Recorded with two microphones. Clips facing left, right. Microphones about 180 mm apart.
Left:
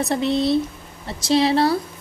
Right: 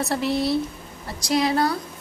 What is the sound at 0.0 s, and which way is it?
A woman's voice, 20° left (ahead or behind).